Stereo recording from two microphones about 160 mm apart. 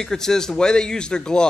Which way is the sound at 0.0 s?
5° left (ahead or behind).